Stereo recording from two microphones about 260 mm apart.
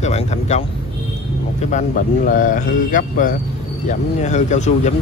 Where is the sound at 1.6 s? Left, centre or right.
Left.